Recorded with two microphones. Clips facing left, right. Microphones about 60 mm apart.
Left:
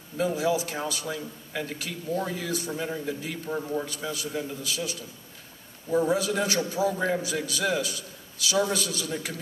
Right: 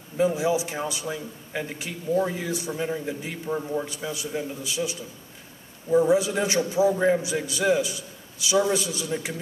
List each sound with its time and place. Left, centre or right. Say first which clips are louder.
0.2 s a man's voice: right 3 dB; right